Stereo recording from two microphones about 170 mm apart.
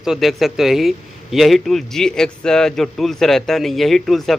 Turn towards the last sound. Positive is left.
turn(degrees=0)  # may be behind; listen again after turning